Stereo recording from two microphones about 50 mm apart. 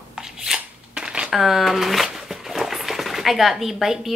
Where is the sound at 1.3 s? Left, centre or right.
Centre.